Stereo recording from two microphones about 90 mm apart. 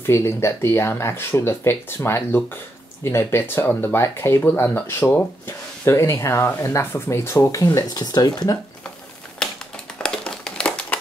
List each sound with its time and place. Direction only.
0.0 s speech: 30° left (ahead or behind); by 8.5 s 45° left (ahead or behind)
9.4 s typing: 10° left (ahead or behind)
10.0 s crumpling: 10° left (ahead or behind)